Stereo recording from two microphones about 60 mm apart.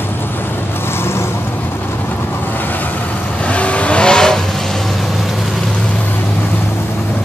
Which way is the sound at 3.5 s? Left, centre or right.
Left.